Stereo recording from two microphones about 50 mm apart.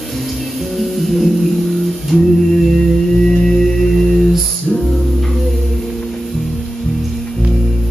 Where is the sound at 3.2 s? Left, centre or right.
Centre.